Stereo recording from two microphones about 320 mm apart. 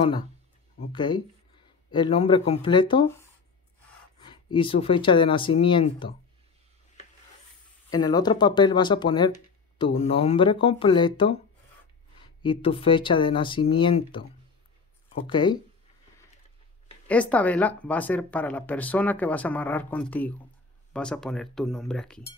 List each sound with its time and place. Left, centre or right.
0.9 s speech: centre
4.6 s speech: centre
7.9 s speech: centre
12.4 s speech: centre
15.2 s speech: centre
17.1 s speech: centre